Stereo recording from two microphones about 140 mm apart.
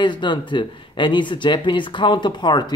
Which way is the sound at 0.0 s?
35° left (ahead or behind).